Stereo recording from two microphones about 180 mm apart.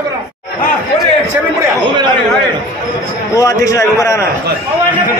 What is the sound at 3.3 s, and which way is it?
Speech, 20° left (ahead or behind).